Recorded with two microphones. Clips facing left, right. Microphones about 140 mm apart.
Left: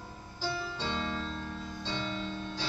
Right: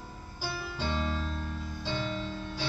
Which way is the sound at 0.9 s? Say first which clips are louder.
Right 2 dB; 15° right (ahead or behind).